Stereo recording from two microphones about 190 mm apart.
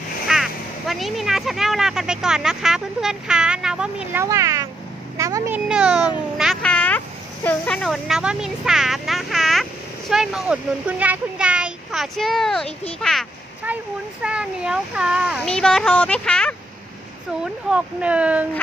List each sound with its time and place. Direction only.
0.3 s speech: centre (ahead or behind); by 5.6 s 15° right (ahead or behind)
5.7 s a sound: 5° right (ahead or behind)
7.4 s speech: 5° left (ahead or behind)